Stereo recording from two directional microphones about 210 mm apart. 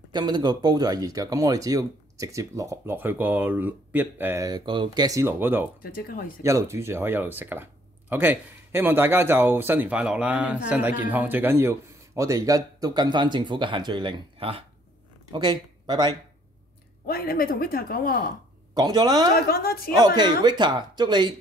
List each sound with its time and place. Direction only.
0.1 s speech: 20° right (ahead or behind)
5.8 s speech: 45° left (ahead or behind)
6.4 s speech: 15° right (ahead or behind)
17.0 s speech: 45° left (ahead or behind)
18.8 s speech: 20° right (ahead or behind)
19.4 s speech: 45° left (ahead or behind)
20.4 s speech: 20° right (ahead or behind)